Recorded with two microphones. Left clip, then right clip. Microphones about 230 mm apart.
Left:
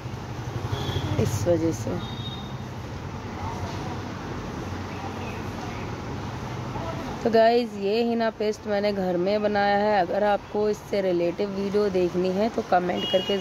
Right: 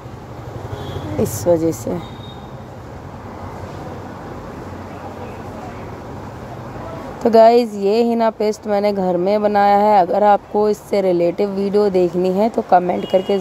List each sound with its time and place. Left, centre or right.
1.2 s a woman's voice: centre
7.2 s a woman's voice: right